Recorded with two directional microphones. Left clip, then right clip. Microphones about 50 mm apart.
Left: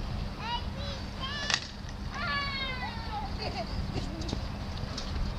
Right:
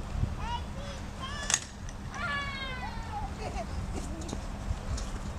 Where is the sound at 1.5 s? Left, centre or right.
Right.